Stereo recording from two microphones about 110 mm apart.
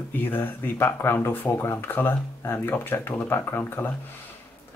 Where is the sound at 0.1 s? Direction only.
20° left (ahead or behind).